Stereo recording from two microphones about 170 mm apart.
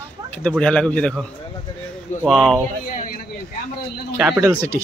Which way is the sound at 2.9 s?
55° left (ahead or behind).